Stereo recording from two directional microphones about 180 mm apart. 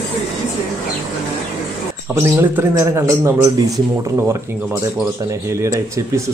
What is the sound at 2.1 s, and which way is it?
A man's voice, 15° right (ahead or behind).